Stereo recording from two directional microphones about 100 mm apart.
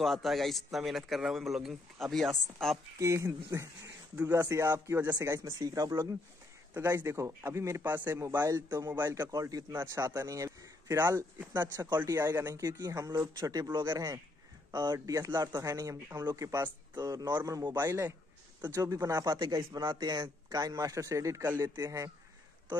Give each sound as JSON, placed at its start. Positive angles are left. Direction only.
{"t": 0.0, "sound": "a man's voice", "side_deg": 0}
{"t": 3.0, "sound": "a man's voice", "side_deg": -30}
{"t": 9.7, "sound": "speech", "side_deg": -25}
{"t": 12.6, "sound": "a man's voice", "side_deg": -35}
{"t": 16.9, "sound": "a man's voice", "side_deg": -40}
{"t": 17.8, "sound": "a man's voice", "side_deg": -30}